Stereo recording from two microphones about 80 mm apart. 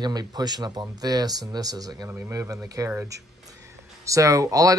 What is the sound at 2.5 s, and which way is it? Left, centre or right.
Speech, right.